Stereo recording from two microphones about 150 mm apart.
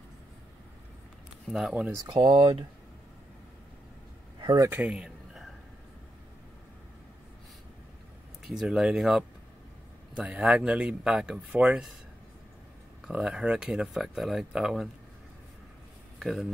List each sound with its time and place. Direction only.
1.5 s speech: 5° right (ahead or behind)
1.9 s speech: 25° right (ahead or behind)
4.4 s a sound: 30° right (ahead or behind)
4.6 s a sound: 10° right (ahead or behind)
8.5 s speech: 5° right (ahead or behind)
13.0 s speech: 5° right (ahead or behind)
16.2 s speech: centre (ahead or behind)